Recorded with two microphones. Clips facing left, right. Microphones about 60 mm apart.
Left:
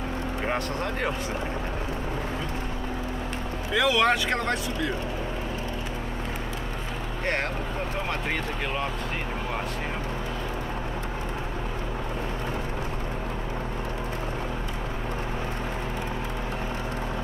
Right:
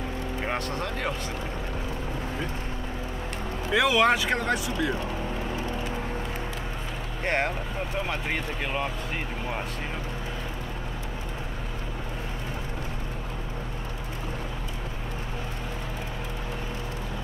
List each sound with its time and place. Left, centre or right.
3.7 s speech: centre
7.2 s speech: centre